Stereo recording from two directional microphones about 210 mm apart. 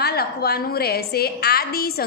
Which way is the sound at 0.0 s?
50° left (ahead or behind).